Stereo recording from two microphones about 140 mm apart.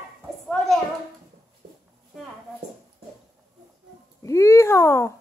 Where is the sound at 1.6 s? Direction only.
65° right (ahead or behind).